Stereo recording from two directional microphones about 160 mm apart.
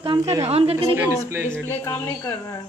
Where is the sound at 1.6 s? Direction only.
15° left (ahead or behind).